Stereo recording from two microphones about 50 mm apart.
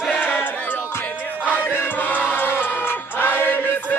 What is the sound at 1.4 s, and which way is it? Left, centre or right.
Music, left.